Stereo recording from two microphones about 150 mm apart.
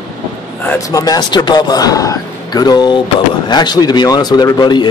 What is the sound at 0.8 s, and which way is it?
Speech, 25° left (ahead or behind).